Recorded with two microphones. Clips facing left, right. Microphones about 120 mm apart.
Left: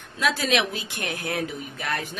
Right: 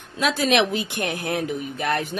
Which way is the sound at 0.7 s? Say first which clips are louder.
Right 6 dB; 20° right (ahead or behind).